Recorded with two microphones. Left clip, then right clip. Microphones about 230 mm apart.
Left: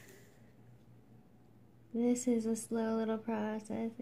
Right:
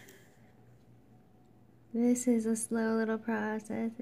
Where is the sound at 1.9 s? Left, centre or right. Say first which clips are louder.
Right 3 dB; right.